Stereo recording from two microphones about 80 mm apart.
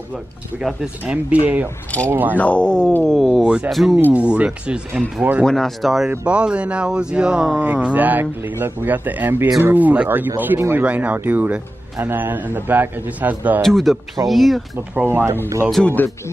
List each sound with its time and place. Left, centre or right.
0.6 s speech: centre
2.3 s speech: centre
3.4 s speech: centre
4.0 s speech: centre
5.4 s speech: centre
6.0 s speech: centre
13.6 s speech: centre
15.0 s speech: right
15.8 s speech: left